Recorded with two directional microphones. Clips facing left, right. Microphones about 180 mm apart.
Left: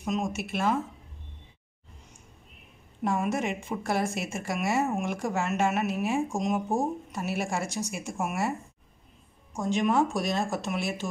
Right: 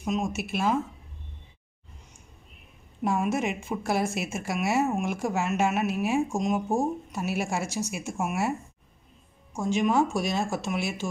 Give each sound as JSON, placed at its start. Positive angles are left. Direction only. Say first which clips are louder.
{"t": 0.0, "sound": "a woman's voice", "louder": "right 1 dB", "side_deg": -5}
{"t": 3.0, "sound": "a woman's voice", "louder": "right 2 dB", "side_deg": -5}
{"t": 9.5, "sound": "a woman's voice", "louder": "right 1 dB", "side_deg": 0}